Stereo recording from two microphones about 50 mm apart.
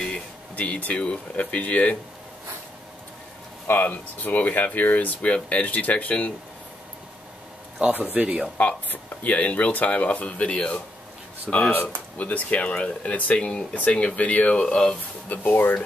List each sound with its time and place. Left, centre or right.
0.1 s speech: left
3.6 s speech: left
7.9 s speech: right
8.5 s speech: left
11.5 s speech: centre
12.2 s speech: left
13.4 s speech: centre
13.7 s speech: left
15.2 s speech: left